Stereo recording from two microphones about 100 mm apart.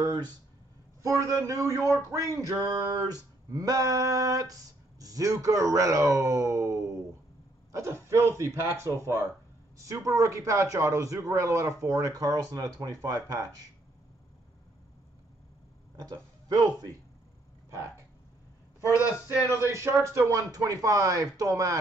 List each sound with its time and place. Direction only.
1.0 s a man's voice: 30° right (ahead or behind)
16.0 s speech: 35° right (ahead or behind)
19.4 s speech: 25° right (ahead or behind)